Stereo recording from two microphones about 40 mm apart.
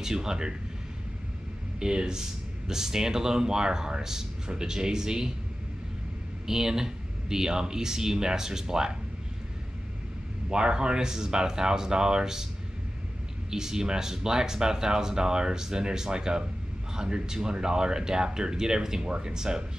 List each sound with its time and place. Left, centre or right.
0.0 s speech: centre
1.8 s speech: centre
6.4 s speech: centre
10.5 s speech: centre
13.5 s speech: centre